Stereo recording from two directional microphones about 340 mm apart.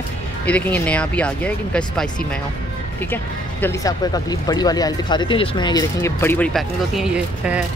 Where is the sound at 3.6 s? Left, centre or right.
Centre.